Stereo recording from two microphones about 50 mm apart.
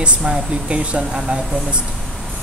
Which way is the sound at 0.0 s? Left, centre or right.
Right.